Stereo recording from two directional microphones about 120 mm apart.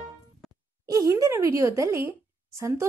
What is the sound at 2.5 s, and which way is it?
Speech, 25° right (ahead or behind).